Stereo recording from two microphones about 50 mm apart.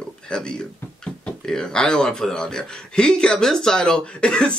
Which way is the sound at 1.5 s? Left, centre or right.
Centre.